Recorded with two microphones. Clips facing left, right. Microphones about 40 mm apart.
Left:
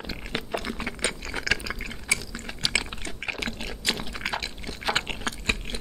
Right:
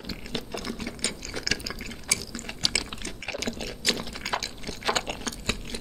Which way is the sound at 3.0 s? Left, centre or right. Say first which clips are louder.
Left 2 dB; left.